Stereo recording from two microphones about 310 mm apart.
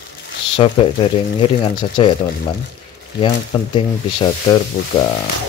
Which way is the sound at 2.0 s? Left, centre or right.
Centre.